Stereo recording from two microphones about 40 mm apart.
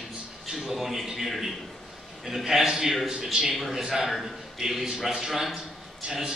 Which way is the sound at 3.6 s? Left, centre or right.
Centre.